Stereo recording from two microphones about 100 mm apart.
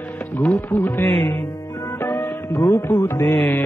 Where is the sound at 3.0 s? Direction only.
30° left (ahead or behind).